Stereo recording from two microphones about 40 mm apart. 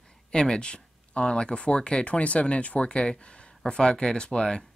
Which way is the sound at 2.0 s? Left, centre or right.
Left.